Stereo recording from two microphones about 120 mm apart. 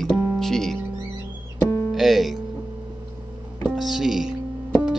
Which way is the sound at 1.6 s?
25° left (ahead or behind).